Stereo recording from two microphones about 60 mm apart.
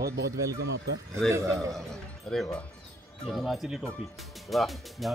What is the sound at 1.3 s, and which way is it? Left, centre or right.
Speech, right.